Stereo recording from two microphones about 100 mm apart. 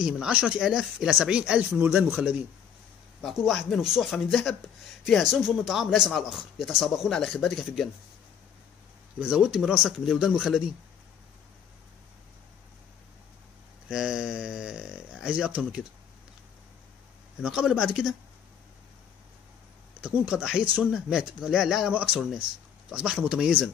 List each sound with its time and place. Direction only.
0.0 s speech: 10° right (ahead or behind)
1.7 s speech: 20° right (ahead or behind)
3.3 s speech: centre (ahead or behind)
9.3 s speech: 10° right (ahead or behind)
13.8 s speech: 5° right (ahead or behind)
17.4 s speech: 5° right (ahead or behind)
20.0 s speech: 10° right (ahead or behind)